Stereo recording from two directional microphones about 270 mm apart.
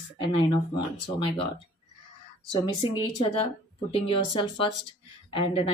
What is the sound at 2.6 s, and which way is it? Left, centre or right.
A woman's voice, centre.